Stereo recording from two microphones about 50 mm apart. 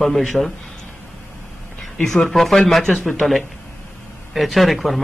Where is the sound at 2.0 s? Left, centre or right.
Centre.